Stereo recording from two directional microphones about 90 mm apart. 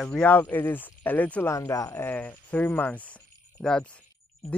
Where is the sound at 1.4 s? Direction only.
35° left (ahead or behind).